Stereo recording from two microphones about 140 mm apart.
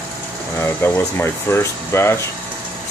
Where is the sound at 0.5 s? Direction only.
15° left (ahead or behind).